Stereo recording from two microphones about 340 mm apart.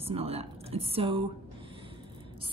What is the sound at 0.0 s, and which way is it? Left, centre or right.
A woman's voice, centre.